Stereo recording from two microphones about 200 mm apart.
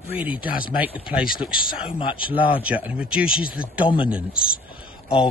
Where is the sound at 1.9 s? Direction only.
25° left (ahead or behind).